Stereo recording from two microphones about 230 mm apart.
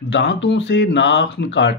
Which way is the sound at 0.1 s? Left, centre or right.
Left.